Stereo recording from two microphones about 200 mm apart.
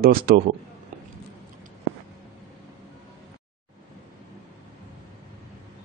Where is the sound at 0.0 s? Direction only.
50° right (ahead or behind).